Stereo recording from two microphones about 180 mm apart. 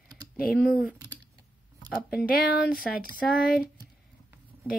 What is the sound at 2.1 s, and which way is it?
Speech, 55° left (ahead or behind).